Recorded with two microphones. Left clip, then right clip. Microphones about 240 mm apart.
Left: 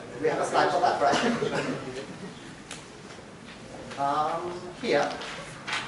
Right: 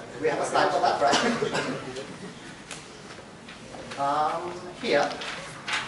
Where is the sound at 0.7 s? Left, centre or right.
Centre.